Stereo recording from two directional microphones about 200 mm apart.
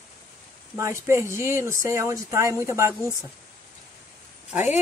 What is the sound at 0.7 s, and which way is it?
Speech, 15° right (ahead or behind).